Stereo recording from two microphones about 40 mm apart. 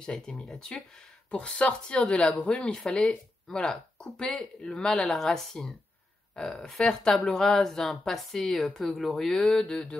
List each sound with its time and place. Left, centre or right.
0.0 s speech: centre
4.9 s a woman's voice: centre
9.1 s speech: centre